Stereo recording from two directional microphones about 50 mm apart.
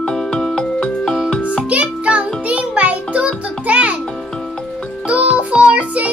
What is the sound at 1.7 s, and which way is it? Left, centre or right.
Music, right.